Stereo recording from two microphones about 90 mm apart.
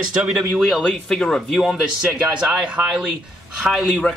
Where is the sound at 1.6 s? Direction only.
10° right (ahead or behind).